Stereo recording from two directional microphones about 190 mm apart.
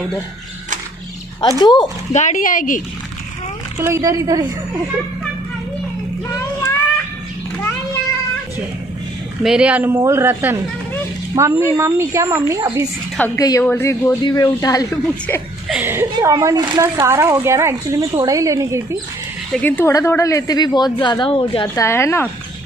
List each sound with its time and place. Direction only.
1.6 s speech: 20° left (ahead or behind)
2.1 s speech: 40° left (ahead or behind)
3.8 s a woman's voice: 15° right (ahead or behind)
9.4 s a woman's voice: 5° right (ahead or behind)
13.2 s a woman's voice: 15° left (ahead or behind)
15.7 s a woman's voice: 10° right (ahead or behind)
19.5 s a woman's voice: 10° left (ahead or behind)